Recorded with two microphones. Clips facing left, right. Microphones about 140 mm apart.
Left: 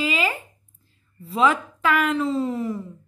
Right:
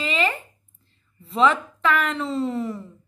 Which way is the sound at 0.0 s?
5° left (ahead or behind).